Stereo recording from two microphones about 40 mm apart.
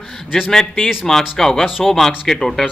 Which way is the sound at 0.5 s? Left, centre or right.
Centre.